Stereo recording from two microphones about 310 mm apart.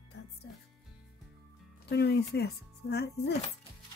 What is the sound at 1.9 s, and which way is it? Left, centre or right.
Speech, left.